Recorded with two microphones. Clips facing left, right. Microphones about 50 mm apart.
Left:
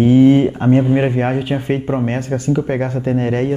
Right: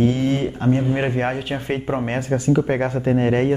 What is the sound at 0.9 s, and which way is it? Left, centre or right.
Speech, centre.